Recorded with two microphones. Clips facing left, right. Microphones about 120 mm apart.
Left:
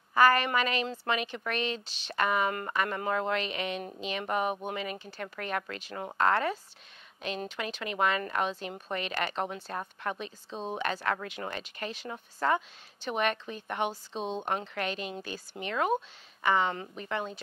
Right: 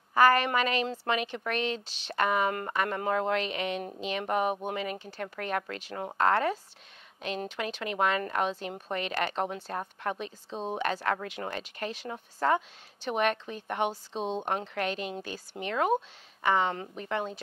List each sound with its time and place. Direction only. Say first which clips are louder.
0.1 s speech: right 1 dB; 50° right (ahead or behind)
10.5 s a woman's voice: right 2 dB; 30° right (ahead or behind)
10.8 s speech: right 2 dB; 40° right (ahead or behind)
11.2 s speech: right 2 dB; 50° right (ahead or behind)
12.1 s speech: right 1 dB; 40° right (ahead or behind)
14.1 s speech: right 2 dB; 15° right (ahead or behind)
14.4 s speech: right 1 dB; 40° right (ahead or behind)
14.9 s speech: right 2 dB; 55° right (ahead or behind)